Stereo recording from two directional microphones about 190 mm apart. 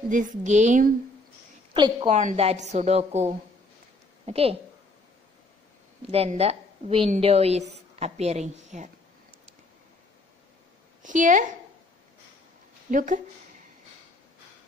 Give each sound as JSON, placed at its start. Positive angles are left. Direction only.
{"t": 0.1, "sound": "a woman's voice", "side_deg": -40}
{"t": 1.7, "sound": "a woman's voice", "side_deg": -25}
{"t": 6.1, "sound": "a woman's voice", "side_deg": -30}
{"t": 11.0, "sound": "a woman's voice", "side_deg": -45}
{"t": 12.9, "sound": "speech", "side_deg": -45}